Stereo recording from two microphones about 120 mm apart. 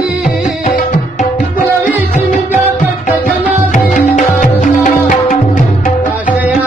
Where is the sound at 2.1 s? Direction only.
90° left.